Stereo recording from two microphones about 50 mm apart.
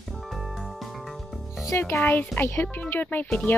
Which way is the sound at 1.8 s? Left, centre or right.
Left.